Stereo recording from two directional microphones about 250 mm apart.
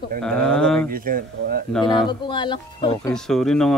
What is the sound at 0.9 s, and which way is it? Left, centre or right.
Speech, right.